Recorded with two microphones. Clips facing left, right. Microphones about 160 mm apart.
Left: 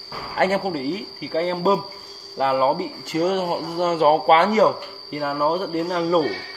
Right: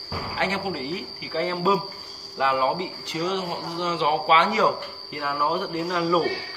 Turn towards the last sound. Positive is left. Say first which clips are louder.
# left 3 dB
turn(degrees=40)  # may be behind; listen again after turning